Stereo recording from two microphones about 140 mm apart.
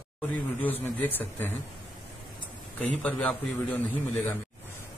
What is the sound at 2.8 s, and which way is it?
A man's voice, 10° left (ahead or behind).